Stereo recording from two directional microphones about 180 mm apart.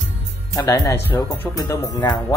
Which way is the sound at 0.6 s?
15° left (ahead or behind).